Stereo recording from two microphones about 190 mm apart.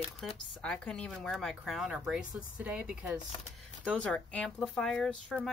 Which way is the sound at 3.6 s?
5° left (ahead or behind).